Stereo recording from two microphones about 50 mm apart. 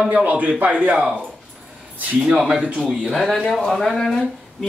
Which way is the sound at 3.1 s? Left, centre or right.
Centre.